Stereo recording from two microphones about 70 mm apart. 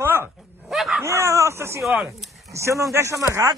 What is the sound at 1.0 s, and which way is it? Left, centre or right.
Speech, right.